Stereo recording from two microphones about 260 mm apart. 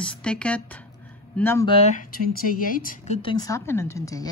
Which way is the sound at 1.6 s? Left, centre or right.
Left.